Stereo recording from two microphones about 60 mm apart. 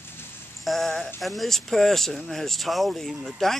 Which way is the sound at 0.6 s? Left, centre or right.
Centre.